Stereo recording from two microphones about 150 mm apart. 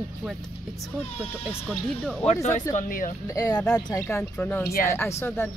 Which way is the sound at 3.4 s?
25° left (ahead or behind).